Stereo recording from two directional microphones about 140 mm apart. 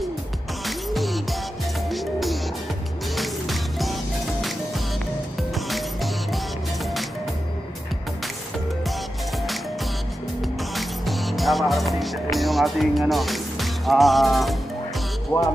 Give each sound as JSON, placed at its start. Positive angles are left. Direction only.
{"t": 0.7, "sound": "music", "side_deg": 0}
{"t": 10.7, "sound": "music", "side_deg": 0}
{"t": 13.1, "sound": "speech", "side_deg": 0}
{"t": 15.3, "sound": "speech", "side_deg": 20}